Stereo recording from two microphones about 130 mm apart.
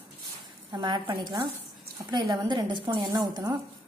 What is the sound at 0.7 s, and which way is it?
A woman's voice, 35° right (ahead or behind).